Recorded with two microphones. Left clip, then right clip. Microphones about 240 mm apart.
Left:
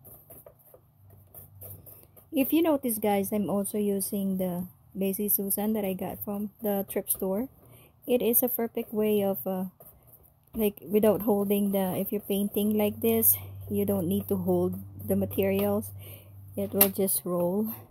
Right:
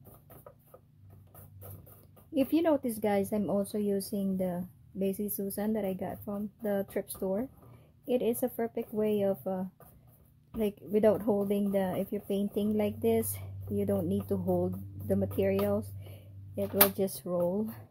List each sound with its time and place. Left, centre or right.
2.3 s speech: left